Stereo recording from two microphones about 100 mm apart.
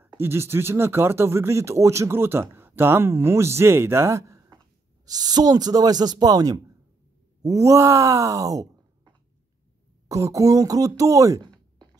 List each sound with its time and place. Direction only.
0.2 s speech: 25° right (ahead or behind)
10.0 s speech: 35° right (ahead or behind)